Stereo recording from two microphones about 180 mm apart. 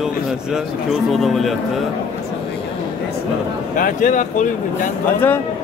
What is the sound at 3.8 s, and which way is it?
Speech, 45° left (ahead or behind).